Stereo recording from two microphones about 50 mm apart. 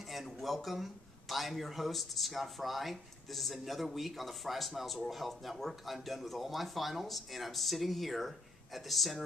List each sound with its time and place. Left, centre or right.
0.1 s speech: centre